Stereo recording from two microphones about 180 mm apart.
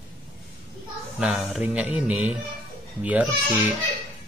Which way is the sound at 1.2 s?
Centre (ahead or behind).